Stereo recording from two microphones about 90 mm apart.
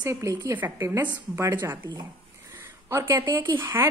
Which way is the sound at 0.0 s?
35° right (ahead or behind).